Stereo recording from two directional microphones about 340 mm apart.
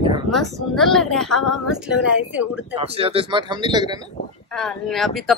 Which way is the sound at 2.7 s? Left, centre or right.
Centre.